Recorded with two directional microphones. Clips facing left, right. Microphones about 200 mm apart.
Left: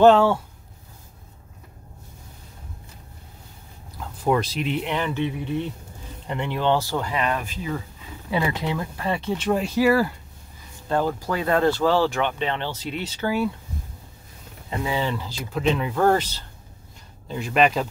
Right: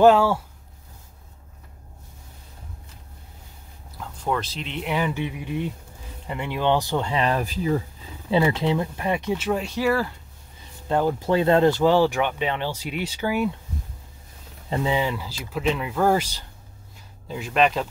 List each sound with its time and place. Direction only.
0.0 s speech: 5° right (ahead or behind)
4.2 s speech: 10° left (ahead or behind)
4.8 s speech: 10° right (ahead or behind); by 7.8 s 35° right (ahead or behind)
8.3 s speech: 25° right (ahead or behind); by 10.1 s 5° left (ahead or behind)
10.9 s speech: 15° right (ahead or behind)
14.7 s speech: 25° right (ahead or behind)
15.0 s speech: 10° right (ahead or behind)
17.3 s speech: centre (ahead or behind)